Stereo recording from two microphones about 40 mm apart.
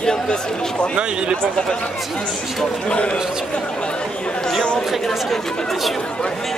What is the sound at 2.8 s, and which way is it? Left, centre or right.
Speech, left.